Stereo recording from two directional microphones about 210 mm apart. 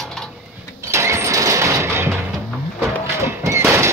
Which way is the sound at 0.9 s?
15° right (ahead or behind).